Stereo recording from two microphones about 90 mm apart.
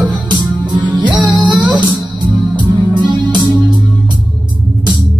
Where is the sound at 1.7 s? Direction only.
55° right (ahead or behind).